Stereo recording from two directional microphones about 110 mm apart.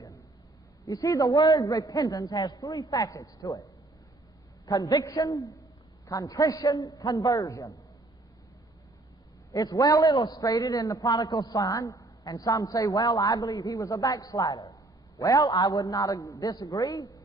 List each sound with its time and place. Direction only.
0.8 s a man's voice: 30° left (ahead or behind)
4.6 s a man's voice: 35° left (ahead or behind)
9.5 s a man's voice: 35° left (ahead or behind)